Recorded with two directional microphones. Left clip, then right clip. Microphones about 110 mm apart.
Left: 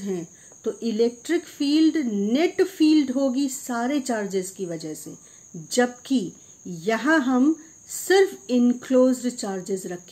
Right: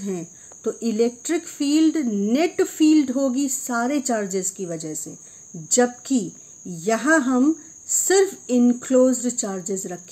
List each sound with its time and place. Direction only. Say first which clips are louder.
0.7 s speech: right 1 dB; 50° right (ahead or behind)